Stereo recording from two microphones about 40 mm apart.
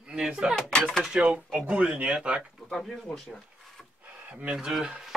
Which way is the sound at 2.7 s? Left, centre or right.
Centre.